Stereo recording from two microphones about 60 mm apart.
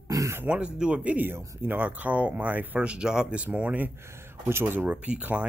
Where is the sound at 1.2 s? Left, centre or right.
Right.